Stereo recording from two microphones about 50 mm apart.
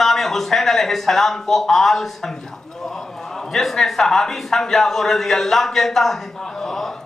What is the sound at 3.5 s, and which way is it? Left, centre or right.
A man's voice, centre.